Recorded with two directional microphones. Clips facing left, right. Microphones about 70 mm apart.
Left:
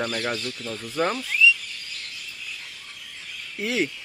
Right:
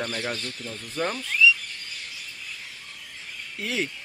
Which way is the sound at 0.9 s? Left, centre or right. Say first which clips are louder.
Left 4 dB; left.